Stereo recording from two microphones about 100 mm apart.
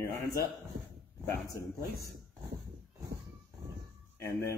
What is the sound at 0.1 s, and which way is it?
Speech, 30° left (ahead or behind).